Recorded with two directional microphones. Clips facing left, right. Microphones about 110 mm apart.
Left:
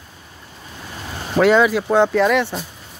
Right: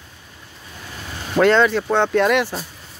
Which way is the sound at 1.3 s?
5° left (ahead or behind).